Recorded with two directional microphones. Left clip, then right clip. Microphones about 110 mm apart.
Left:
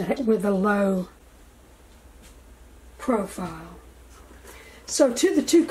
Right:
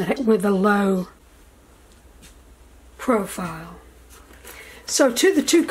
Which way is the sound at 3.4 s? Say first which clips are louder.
Right 4 dB; 65° right (ahead or behind).